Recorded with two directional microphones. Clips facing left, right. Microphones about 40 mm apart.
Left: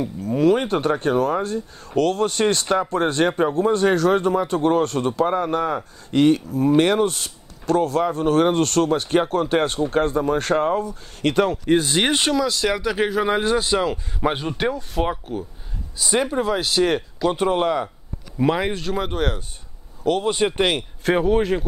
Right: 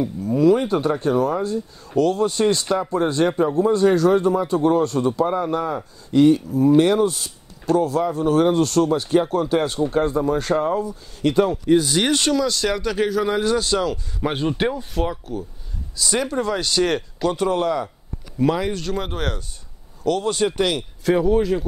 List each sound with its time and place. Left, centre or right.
0.4 s speech: left
12.3 s speech: centre
14.2 s speech: centre
15.0 s speech: left
16.0 s speech: left
17.3 s speech: left
18.8 s speech: centre
20.0 s speech: centre; by 21.6 s left